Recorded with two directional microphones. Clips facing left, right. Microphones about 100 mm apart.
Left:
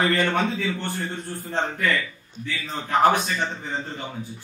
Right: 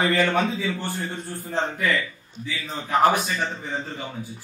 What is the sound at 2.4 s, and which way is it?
A man's voice, 5° right (ahead or behind).